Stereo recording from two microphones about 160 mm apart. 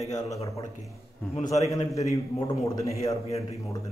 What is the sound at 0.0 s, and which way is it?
A man's voice, 20° left (ahead or behind).